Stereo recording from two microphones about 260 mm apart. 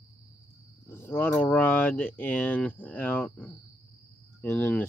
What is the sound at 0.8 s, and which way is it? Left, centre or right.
Speech, centre.